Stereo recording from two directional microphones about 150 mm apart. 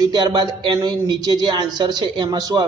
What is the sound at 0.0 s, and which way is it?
Speech, 30° right (ahead or behind).